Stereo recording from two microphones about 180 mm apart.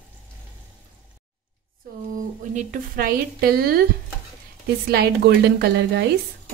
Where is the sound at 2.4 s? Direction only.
45° right (ahead or behind).